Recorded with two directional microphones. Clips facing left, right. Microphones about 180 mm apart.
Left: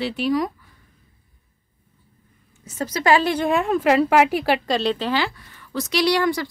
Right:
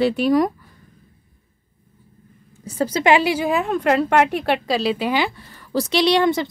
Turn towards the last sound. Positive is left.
turn(degrees=-25)  # may be behind; listen again after turning